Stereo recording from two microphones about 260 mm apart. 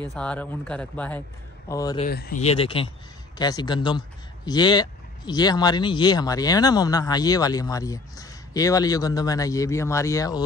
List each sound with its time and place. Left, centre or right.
0.1 s speech: centre
2.0 s speech: left
2.4 s speech: left